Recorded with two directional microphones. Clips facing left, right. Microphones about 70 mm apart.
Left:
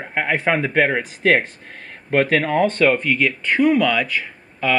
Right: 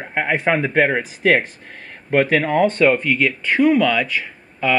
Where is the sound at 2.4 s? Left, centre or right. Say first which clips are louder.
Right 1 dB; centre.